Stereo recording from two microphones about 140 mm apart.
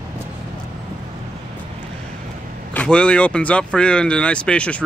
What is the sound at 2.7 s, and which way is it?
Speech, 5° left (ahead or behind).